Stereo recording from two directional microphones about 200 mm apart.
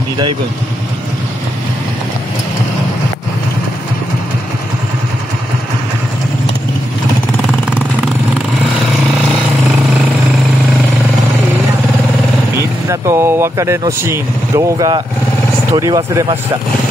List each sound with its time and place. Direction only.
12.9 s speech: 15° right (ahead or behind)